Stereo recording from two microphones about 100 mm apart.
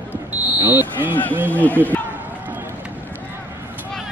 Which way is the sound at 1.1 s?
15° left (ahead or behind).